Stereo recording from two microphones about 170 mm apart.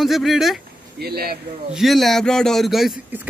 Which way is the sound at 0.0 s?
Centre (ahead or behind).